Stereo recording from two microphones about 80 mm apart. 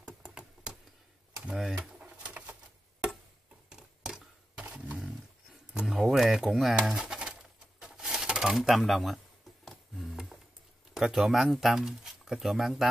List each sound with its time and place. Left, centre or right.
0.0 s typing: centre
1.4 s speech: centre
2.0 s pigeon: centre
3.7 s a sound: centre
6.8 s pigeon: centre
7.8 s typewriter: centre
9.7 s a sound: centre
11.0 s speech: centre